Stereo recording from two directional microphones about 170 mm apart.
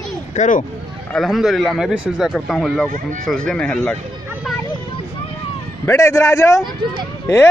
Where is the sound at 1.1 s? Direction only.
Centre (ahead or behind).